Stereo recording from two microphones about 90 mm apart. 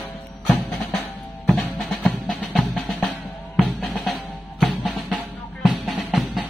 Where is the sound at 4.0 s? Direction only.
Centre (ahead or behind).